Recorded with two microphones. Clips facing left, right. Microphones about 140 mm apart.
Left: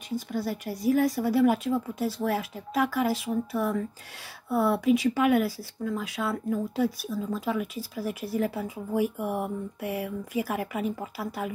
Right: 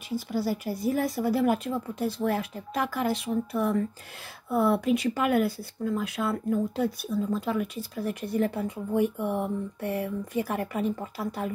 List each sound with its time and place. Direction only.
0.1 s speech: 5° right (ahead or behind)